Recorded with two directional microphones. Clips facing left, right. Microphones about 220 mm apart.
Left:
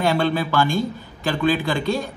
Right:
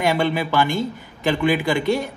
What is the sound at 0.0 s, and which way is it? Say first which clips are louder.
A man's voice: even; 15° right (ahead or behind).